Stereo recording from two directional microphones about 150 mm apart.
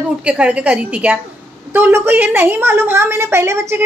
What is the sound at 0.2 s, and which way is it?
A woman's voice, 10° right (ahead or behind).